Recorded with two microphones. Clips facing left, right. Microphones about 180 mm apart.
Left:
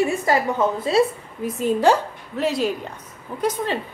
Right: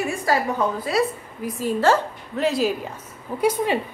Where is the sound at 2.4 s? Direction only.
Centre (ahead or behind).